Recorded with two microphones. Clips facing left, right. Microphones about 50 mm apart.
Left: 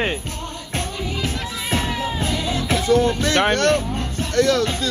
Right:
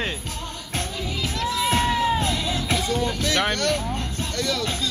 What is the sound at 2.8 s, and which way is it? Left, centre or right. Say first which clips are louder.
Speech: left 7 dB; left.